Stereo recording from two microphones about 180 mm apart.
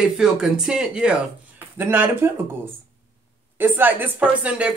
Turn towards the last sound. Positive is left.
turn(degrees=-5)  # may be behind; listen again after turning